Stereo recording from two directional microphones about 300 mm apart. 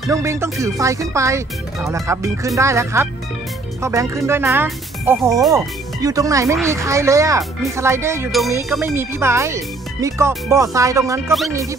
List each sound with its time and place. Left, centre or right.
0.1 s speech: centre